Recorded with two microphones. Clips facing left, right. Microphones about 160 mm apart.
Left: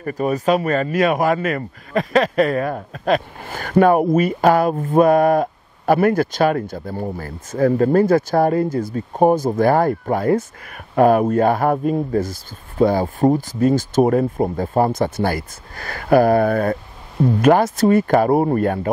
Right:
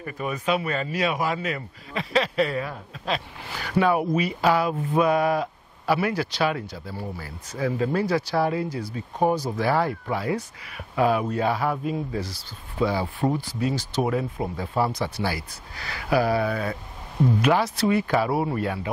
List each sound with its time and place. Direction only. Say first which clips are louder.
0.0 s a man's voice: left 9 dB; 40° left (ahead or behind)